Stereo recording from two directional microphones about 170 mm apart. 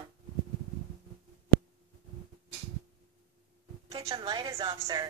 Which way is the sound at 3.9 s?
25° right (ahead or behind).